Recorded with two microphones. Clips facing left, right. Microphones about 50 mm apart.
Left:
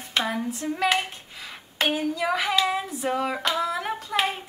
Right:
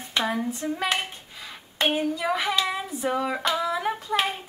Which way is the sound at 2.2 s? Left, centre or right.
Centre.